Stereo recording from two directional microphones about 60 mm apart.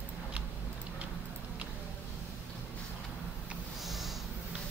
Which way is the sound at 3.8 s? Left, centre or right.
Centre.